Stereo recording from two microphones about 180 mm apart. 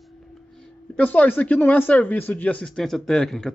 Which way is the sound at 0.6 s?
10° left (ahead or behind).